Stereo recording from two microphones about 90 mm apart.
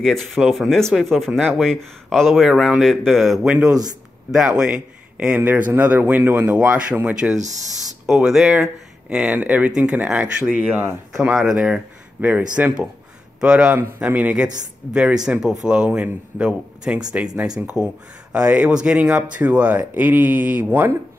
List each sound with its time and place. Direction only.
0.0 s speech: centre (ahead or behind)
18.3 s speech: 15° right (ahead or behind)